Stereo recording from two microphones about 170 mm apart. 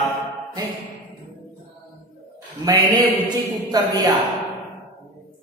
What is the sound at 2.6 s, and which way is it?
A man's voice, 20° right (ahead or behind).